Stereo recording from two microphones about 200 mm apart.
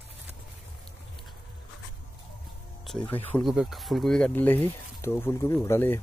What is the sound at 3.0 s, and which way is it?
Speech, 10° left (ahead or behind).